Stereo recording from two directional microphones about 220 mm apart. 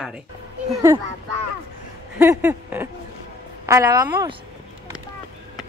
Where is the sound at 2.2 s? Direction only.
10° right (ahead or behind).